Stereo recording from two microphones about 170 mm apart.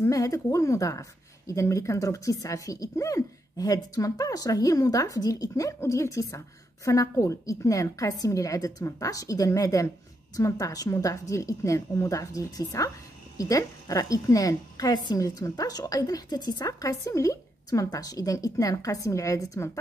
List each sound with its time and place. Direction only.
0.0 s speech: 20° left (ahead or behind)